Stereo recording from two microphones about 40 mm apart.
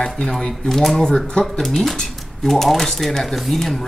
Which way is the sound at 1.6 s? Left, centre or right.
Centre.